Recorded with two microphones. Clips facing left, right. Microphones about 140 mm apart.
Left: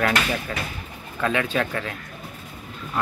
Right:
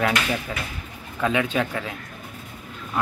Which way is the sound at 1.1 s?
15° right (ahead or behind).